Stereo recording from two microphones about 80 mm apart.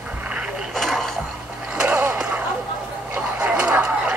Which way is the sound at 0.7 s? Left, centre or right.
Centre.